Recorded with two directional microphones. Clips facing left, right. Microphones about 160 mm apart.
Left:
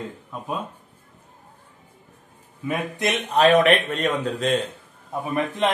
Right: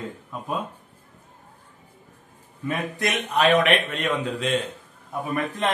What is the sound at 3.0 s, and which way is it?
A man's voice, 25° left (ahead or behind).